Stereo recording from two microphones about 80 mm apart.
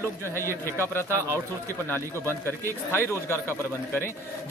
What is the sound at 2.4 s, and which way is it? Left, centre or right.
Speech, left.